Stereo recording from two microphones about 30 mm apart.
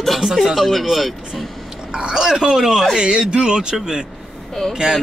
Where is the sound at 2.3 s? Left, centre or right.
Right.